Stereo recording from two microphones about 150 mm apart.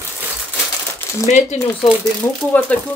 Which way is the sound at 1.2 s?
45° left (ahead or behind).